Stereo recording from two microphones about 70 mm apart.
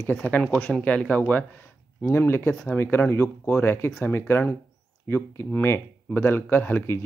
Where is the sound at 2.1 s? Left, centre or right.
Left.